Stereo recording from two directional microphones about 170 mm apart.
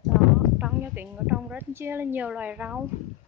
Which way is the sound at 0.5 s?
10° right (ahead or behind).